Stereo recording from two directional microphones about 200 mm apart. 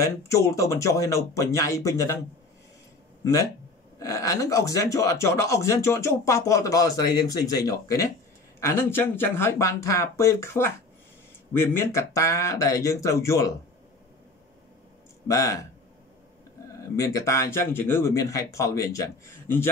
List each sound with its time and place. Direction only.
0.0 s speech: 15° left (ahead or behind)
4.0 s speech: 15° left (ahead or behind)
15.2 s speech: 15° left (ahead or behind)
16.8 s speech: 15° left (ahead or behind)